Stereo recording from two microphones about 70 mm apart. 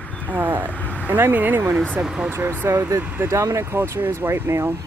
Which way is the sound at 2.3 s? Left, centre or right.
Right.